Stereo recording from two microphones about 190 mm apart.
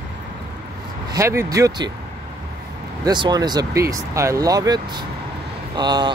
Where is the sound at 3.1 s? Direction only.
20° right (ahead or behind).